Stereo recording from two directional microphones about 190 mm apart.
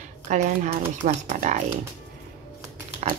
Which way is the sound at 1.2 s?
40° right (ahead or behind).